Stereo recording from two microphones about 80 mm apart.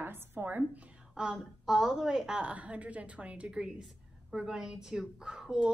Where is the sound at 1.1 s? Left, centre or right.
Centre.